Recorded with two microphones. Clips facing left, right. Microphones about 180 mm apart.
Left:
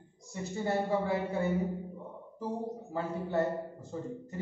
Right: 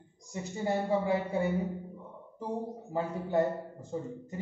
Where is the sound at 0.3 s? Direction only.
15° right (ahead or behind).